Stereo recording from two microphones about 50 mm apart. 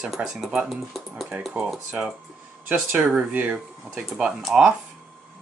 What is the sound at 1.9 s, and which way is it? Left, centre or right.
Speech, centre.